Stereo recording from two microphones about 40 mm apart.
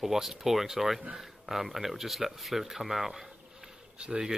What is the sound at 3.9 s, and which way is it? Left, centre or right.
Speech, right.